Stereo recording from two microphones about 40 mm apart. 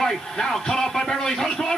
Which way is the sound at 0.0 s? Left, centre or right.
Centre.